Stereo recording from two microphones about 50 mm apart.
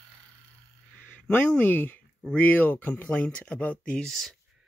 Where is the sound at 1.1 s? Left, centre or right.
Left.